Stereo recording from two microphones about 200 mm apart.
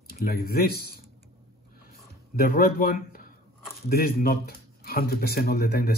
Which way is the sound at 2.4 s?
45° left (ahead or behind).